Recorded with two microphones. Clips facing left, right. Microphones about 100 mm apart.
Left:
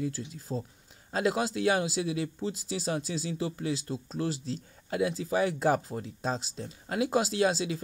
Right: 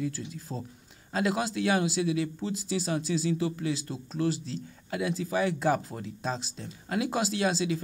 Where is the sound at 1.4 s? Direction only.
35° left (ahead or behind).